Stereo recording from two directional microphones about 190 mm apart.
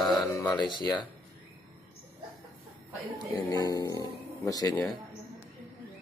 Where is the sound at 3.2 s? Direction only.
20° left (ahead or behind).